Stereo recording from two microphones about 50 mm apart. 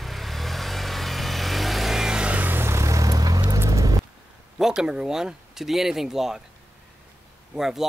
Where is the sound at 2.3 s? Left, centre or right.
Right.